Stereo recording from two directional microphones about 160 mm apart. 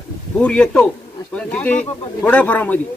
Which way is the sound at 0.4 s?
5° left (ahead or behind).